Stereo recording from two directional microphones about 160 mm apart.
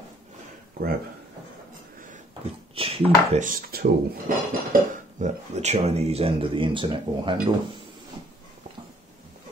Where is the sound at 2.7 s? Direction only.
35° right (ahead or behind).